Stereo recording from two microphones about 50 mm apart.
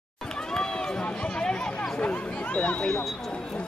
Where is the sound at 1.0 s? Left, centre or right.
Centre.